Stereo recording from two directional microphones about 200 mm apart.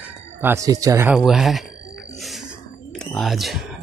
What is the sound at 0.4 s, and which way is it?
Speech, 15° right (ahead or behind).